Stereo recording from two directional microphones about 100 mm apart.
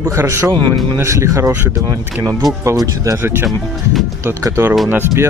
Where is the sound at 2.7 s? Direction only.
30° right (ahead or behind).